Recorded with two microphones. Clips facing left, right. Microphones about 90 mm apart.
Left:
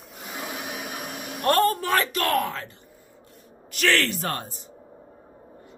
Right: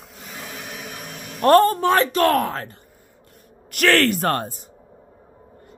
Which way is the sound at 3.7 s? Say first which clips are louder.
Right 6 dB; 55° right (ahead or behind).